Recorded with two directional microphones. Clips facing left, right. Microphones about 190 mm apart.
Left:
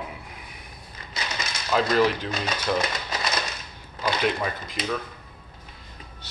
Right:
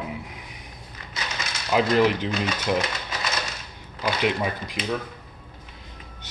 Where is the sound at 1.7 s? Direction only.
15° right (ahead or behind).